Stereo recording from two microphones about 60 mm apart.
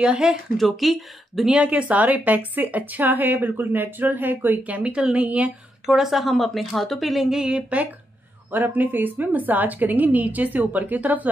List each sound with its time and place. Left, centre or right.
0.0 s speech: centre
0.6 s a woman's voice: centre
1.5 s a woman's voice: right
5.9 s a woman's voice: centre
8.5 s a woman's voice: right